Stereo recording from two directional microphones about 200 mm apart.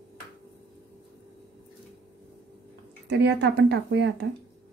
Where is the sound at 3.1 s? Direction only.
60° right (ahead or behind).